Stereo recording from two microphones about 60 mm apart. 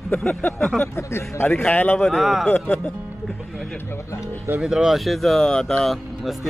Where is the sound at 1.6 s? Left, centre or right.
Left.